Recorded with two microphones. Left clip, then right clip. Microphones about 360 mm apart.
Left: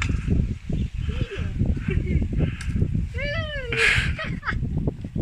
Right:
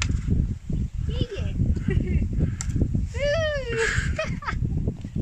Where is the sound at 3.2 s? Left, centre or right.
Centre.